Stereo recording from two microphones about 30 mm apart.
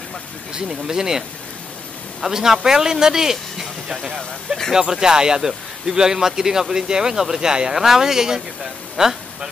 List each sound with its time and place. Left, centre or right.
0.6 s speech: centre
2.2 s a man's voice: centre